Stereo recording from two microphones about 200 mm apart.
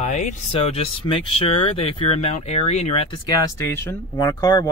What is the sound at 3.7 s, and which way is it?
Speech, 15° left (ahead or behind).